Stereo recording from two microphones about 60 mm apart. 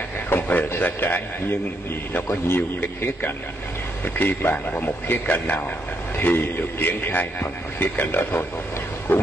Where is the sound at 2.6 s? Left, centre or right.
Left.